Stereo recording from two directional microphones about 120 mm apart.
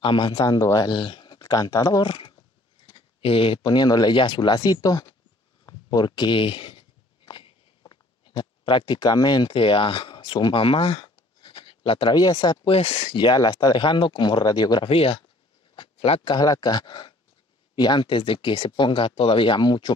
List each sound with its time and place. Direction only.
0.0 s speech: 45° left (ahead or behind)
0.4 s speech: 25° left (ahead or behind)
2.0 s speech: 45° left (ahead or behind)
5.7 s a sound: 35° left (ahead or behind)
12.7 s speech: 50° left (ahead or behind); by 14.9 s 35° left (ahead or behind)
14.9 s speech: 50° left (ahead or behind)
15.7 s a sound: 50° left (ahead or behind)
16.3 s speech: 35° left (ahead or behind)